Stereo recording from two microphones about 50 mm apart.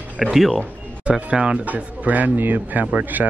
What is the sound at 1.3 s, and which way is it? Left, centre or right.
Speech, right.